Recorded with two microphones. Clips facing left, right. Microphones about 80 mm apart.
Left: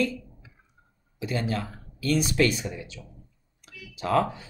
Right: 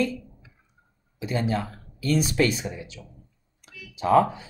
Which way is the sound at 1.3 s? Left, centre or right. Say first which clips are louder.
Right 3 dB; right.